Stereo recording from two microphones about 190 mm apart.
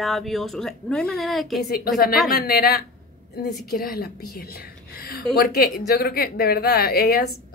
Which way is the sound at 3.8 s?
55° left (ahead or behind).